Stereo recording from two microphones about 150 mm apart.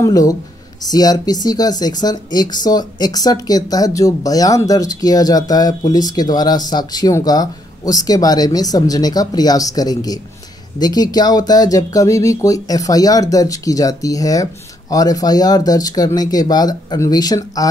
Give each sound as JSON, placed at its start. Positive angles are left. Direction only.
{"t": 0.0, "sound": "speech", "side_deg": 25}